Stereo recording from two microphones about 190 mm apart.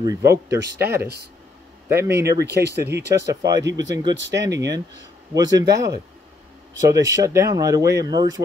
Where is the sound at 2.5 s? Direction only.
60° right (ahead or behind).